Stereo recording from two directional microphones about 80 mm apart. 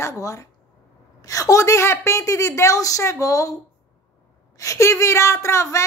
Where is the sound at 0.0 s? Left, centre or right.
Left.